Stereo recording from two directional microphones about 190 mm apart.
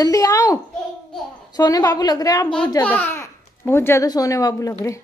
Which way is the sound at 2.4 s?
5° left (ahead or behind).